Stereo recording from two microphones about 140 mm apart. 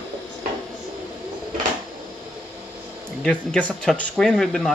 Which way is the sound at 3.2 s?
10° left (ahead or behind).